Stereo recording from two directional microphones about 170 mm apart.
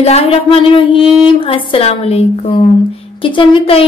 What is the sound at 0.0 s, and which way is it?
A woman's voice, 40° left (ahead or behind).